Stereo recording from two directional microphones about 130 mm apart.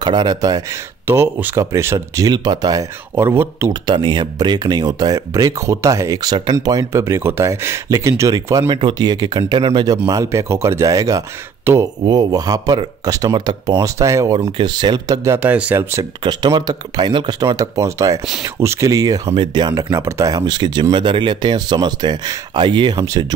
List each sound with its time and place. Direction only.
0.0 s speech: 30° right (ahead or behind)
3.8 s speech: 35° right (ahead or behind)
8.6 s speech: 45° right (ahead or behind)
8.9 s speech: 30° right (ahead or behind)
15.3 s speech: 10° right (ahead or behind)
16.2 s speech: 35° right (ahead or behind)